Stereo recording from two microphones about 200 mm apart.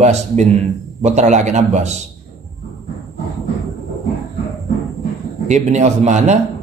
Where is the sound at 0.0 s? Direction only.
35° right (ahead or behind).